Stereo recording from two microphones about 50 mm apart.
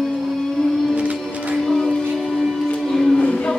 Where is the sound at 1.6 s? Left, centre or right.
Centre.